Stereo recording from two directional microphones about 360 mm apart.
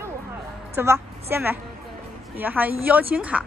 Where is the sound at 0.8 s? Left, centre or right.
Centre.